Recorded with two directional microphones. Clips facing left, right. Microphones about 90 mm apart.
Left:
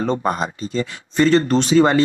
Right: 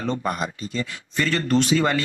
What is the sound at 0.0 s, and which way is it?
Speech, 30° left (ahead or behind).